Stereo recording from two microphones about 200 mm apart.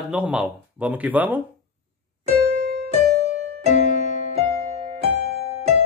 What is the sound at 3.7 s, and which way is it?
Music, 40° left (ahead or behind).